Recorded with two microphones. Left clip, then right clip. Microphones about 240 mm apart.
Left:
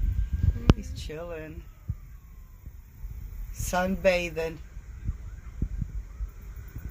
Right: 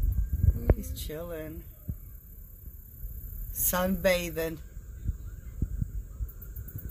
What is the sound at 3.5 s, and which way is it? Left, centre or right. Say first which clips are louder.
A woman's voice: left 2 dB; centre.